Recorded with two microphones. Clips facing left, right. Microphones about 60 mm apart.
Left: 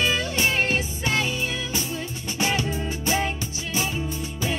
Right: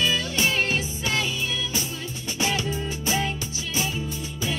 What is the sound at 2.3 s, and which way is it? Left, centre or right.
Music, left.